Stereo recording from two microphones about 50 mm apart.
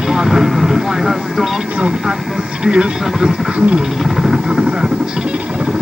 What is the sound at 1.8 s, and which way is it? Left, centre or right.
Vehicle, centre.